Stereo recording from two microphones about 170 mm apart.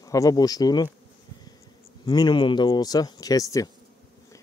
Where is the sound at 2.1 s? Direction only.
25° left (ahead or behind).